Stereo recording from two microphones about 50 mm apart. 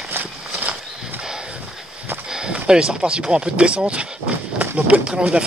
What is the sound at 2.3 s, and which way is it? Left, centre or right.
Speech, centre.